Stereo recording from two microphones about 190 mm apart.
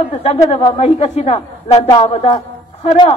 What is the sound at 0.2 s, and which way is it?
A man's voice, 30° left (ahead or behind).